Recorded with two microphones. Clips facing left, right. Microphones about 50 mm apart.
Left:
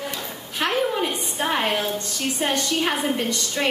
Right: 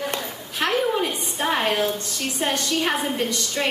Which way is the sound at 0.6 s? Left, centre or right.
Centre.